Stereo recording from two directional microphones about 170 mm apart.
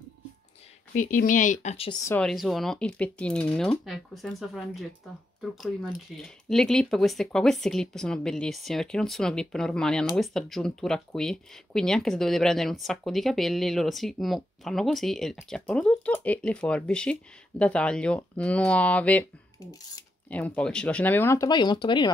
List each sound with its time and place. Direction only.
0.9 s speech: 50° left (ahead or behind)
2.1 s speech: centre (ahead or behind)
19.6 s speech: 20° left (ahead or behind)
20.2 s speech: 10° left (ahead or behind); by 22.1 s 25° left (ahead or behind)